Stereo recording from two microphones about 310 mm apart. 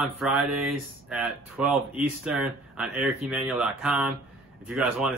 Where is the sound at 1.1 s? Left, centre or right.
Centre.